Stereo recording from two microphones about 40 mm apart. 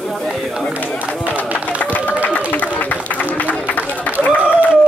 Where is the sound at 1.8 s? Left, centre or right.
Left.